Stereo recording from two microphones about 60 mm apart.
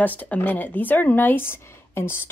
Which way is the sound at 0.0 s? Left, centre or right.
Left.